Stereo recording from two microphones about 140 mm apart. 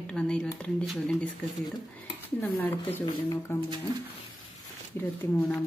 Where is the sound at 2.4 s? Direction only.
15° left (ahead or behind).